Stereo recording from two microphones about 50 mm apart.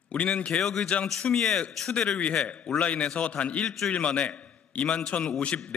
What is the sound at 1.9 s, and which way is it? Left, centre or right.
A man's voice, centre.